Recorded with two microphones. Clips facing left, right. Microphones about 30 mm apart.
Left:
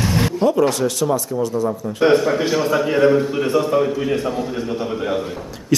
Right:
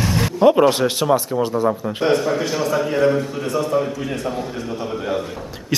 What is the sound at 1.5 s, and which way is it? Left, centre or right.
Speech, right.